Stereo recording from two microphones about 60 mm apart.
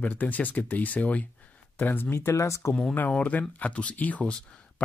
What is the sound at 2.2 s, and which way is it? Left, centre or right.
Speech, left.